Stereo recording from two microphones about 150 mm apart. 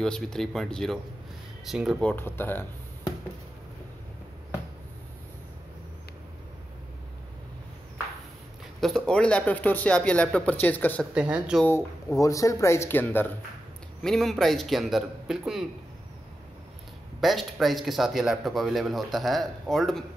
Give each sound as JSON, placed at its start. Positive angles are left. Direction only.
{"t": 0.0, "sound": "speech", "side_deg": 5}
{"t": 2.0, "sound": "speech", "side_deg": 15}
{"t": 8.8, "sound": "speech", "side_deg": 5}
{"t": 11.1, "sound": "speech", "side_deg": -5}
{"t": 12.2, "sound": "speech", "side_deg": 20}
{"t": 14.0, "sound": "speech", "side_deg": 0}
{"t": 17.2, "sound": "speech", "side_deg": 0}